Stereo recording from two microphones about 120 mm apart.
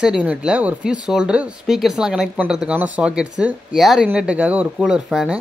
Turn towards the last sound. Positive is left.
turn(degrees=-5)  # may be behind; listen again after turning